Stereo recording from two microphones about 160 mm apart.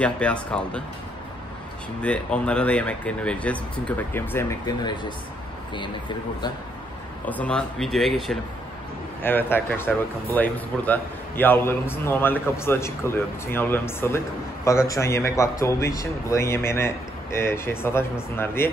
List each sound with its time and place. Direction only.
0.0 s a man's voice: 5° left (ahead or behind)
2.0 s a man's voice: 5° left (ahead or behind); by 6.5 s 30° left (ahead or behind)
7.2 s speech: 10° left (ahead or behind)
9.2 s a man's voice: 10° left (ahead or behind)